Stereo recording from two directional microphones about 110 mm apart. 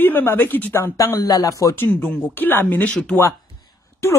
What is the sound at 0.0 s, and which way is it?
Speech, 20° left (ahead or behind).